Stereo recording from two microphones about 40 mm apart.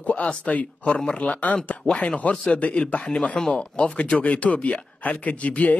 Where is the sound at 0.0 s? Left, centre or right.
Left.